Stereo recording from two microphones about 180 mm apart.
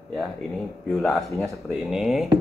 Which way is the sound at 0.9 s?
Centre (ahead or behind).